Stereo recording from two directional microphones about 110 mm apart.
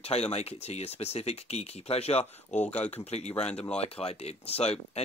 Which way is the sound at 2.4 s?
15° left (ahead or behind).